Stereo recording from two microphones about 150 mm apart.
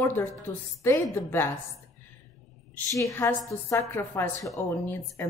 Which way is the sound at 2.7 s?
20° left (ahead or behind).